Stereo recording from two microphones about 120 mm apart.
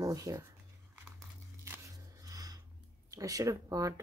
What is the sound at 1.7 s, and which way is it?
Shuffling cards, 30° right (ahead or behind).